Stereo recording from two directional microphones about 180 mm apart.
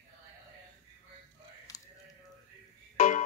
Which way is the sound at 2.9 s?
45° left (ahead or behind).